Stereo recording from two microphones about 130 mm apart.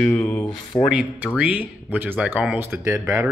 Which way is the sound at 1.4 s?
10° right (ahead or behind).